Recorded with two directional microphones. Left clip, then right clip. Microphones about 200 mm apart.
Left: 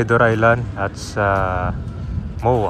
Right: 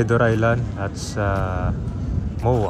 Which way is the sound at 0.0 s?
Centre (ahead or behind).